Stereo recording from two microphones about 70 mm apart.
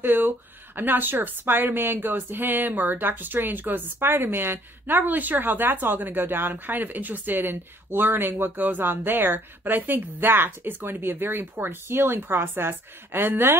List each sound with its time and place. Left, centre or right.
0.0 s speech: right